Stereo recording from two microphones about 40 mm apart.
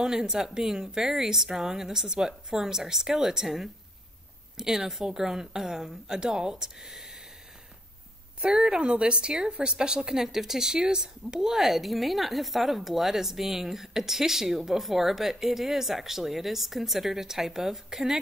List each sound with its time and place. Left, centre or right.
0.0 s speech: centre
8.4 s a woman's voice: centre
9.8 s speech: centre
11.5 s speech: centre